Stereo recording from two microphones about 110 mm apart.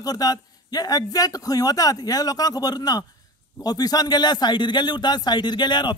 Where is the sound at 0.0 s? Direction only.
35° left (ahead or behind).